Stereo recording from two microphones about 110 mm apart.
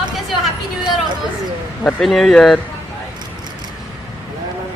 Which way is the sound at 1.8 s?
5° left (ahead or behind).